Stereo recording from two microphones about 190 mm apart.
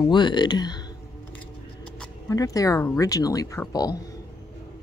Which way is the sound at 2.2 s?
20° left (ahead or behind).